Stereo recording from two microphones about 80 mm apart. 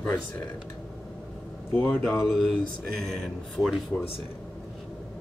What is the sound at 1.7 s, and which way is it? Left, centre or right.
Speech, left.